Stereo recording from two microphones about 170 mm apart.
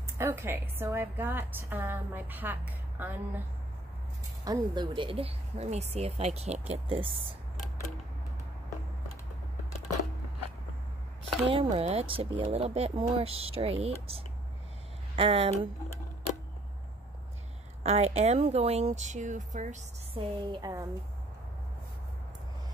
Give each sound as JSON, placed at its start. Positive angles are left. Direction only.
{"t": 0.2, "sound": "a woman's voice", "side_deg": -15}
{"t": 4.5, "sound": "speech", "side_deg": -25}
{"t": 11.4, "sound": "speech", "side_deg": -35}
{"t": 17.8, "sound": "speech", "side_deg": -40}
{"t": 20.2, "sound": "a woman's voice", "side_deg": -25}